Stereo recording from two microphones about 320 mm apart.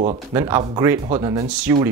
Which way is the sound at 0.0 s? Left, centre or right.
Centre.